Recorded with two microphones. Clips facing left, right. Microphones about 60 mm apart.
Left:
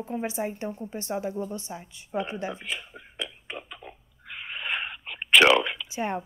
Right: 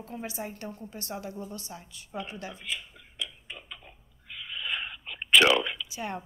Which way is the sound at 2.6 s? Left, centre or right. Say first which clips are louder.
Left 2 dB; left.